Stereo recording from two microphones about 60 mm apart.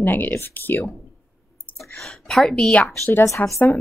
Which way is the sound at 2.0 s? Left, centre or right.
Centre.